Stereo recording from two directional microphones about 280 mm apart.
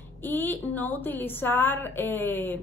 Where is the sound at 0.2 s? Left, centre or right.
Centre.